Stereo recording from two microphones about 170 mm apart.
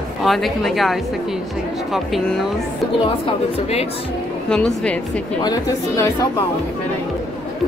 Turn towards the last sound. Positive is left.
turn(degrees=20)  # may be behind; listen again after turning